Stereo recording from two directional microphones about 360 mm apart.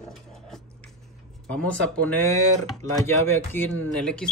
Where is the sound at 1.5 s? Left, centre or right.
Centre.